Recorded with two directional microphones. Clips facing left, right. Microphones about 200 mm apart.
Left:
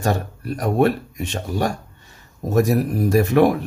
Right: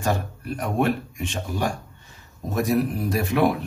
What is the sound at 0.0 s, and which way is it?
A man's voice, 40° left (ahead or behind).